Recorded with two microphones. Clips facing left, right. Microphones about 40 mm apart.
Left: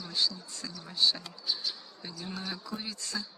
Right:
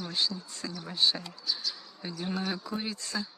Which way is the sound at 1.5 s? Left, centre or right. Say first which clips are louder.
Even; left.